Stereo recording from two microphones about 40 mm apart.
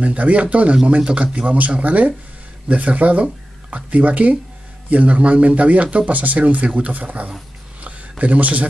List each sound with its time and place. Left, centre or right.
0.0 s speech: right